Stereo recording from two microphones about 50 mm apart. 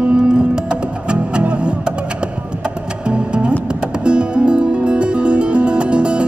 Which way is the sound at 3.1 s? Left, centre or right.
Centre.